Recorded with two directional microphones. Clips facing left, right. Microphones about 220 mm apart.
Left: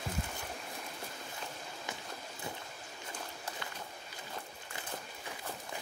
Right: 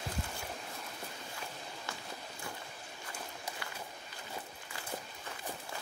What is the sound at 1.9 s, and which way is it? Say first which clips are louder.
Run: left 2 dB; 20° left (ahead or behind).